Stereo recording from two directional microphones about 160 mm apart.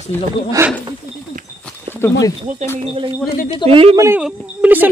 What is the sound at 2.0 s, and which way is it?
Speech, 15° left (ahead or behind).